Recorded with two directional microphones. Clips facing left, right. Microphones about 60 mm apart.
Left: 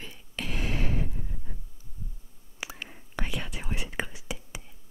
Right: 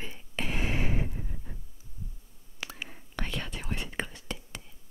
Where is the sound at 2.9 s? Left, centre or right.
Centre.